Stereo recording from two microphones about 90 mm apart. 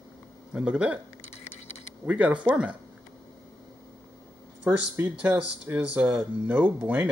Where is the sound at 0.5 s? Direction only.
10° right (ahead or behind).